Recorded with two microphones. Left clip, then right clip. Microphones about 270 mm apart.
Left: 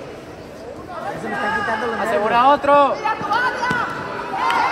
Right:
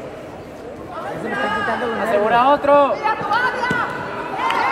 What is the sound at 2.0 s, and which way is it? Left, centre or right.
Speech, left.